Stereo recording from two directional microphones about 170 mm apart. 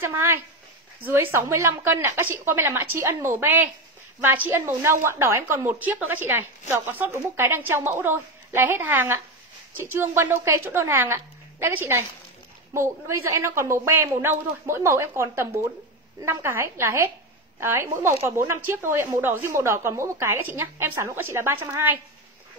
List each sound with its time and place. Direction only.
0.0 s a woman's voice: 15° right (ahead or behind)